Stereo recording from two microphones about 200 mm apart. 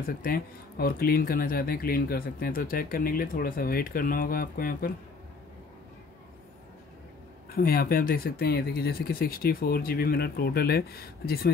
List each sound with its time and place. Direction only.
0.0 s speech: 45° left (ahead or behind)
7.5 s speech: 50° left (ahead or behind)